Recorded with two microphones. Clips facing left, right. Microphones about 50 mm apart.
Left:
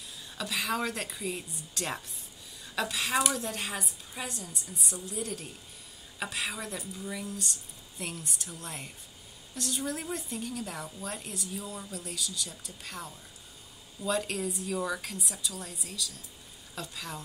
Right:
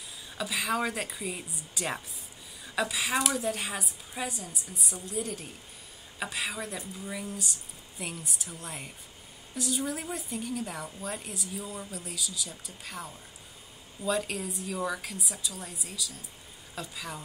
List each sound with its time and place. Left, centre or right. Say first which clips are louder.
0.4 s a woman's voice: right 2 dB; centre